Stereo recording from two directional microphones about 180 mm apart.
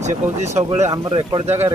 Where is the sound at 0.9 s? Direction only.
25° right (ahead or behind).